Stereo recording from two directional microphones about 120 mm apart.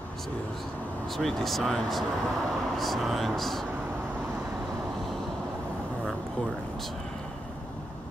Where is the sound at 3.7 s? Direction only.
15° right (ahead or behind).